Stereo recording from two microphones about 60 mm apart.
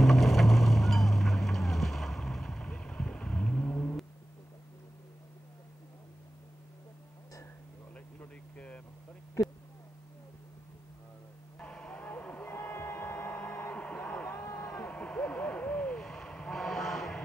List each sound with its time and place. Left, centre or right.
0.0 s boat: centre; by 3.9 s left
8.5 s vehicle: centre
11.6 s vehicle: centre
12.7 s a sound: left; by 16.0 s centre
16.0 s vehicle: centre